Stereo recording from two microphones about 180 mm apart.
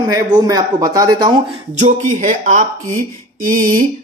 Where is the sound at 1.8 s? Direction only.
45° right (ahead or behind).